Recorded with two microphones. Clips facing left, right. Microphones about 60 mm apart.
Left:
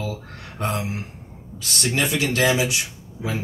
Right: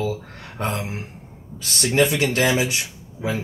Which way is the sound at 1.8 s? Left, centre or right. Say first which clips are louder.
Right 4 dB; right.